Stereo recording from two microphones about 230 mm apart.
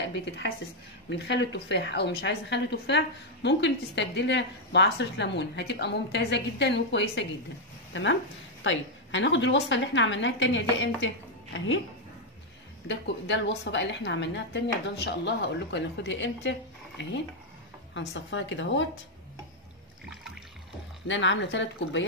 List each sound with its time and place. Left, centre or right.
0.1 s a woman's voice: left
12.8 s a woman's voice: left
17.9 s a woman's voice: left
21.1 s a woman's voice: left